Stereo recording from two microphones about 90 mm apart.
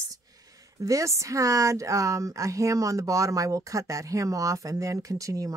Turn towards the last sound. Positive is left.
turn(degrees=-40)  # may be behind; listen again after turning